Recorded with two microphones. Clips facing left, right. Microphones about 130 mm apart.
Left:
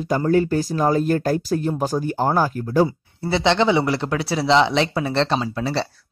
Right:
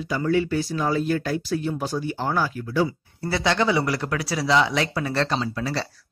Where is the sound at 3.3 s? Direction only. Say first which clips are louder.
Left 4 dB; 25° left (ahead or behind).